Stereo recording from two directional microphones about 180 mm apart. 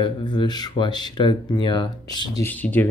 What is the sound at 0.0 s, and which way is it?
Speech, 25° left (ahead or behind).